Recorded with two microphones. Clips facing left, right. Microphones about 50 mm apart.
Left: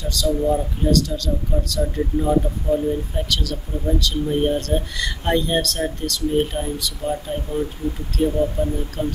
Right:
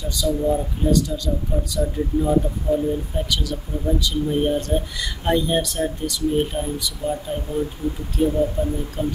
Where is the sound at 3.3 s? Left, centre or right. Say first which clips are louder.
Left 1 dB; centre.